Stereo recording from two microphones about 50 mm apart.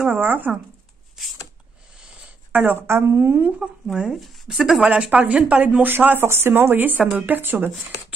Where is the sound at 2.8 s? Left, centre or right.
Right.